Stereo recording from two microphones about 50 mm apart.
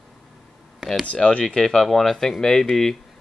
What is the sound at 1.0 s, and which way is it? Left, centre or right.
Speech, left.